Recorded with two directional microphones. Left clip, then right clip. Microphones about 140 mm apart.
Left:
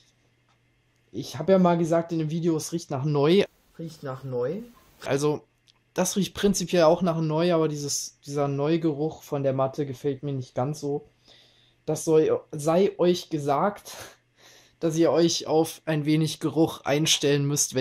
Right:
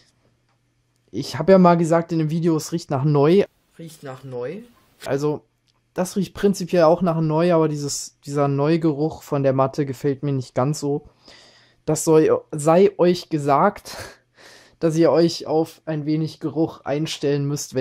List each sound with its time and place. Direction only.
1.1 s speech: 50° right (ahead or behind)
4.3 s speech: 25° right (ahead or behind); by 15.4 s 50° right (ahead or behind)
15.4 s speech: 25° right (ahead or behind)
15.8 s speech: 10° right (ahead or behind)